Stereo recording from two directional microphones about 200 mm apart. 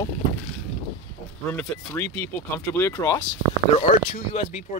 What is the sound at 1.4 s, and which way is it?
Speech, 10° left (ahead or behind).